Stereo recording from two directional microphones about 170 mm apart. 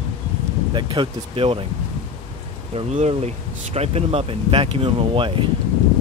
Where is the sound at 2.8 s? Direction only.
40° right (ahead or behind).